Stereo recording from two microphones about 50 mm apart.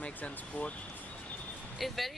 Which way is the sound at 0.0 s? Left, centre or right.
Left.